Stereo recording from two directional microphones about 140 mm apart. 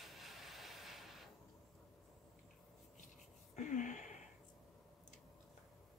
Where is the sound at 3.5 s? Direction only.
60° left (ahead or behind).